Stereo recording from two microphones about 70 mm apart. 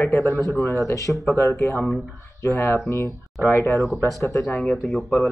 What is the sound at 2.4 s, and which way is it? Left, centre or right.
Speech, left.